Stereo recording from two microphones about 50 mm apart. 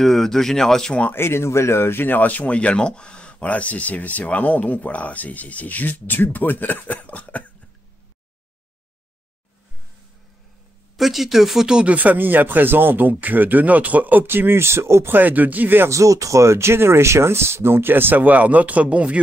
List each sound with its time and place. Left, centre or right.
0.0 s speech: centre
1.1 s speech: left
11.0 s speech: centre
11.6 s speech: right
15.1 s speech: right
15.9 s speech: right